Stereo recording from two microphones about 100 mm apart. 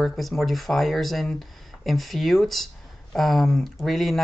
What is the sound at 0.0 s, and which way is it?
Speech, centre (ahead or behind).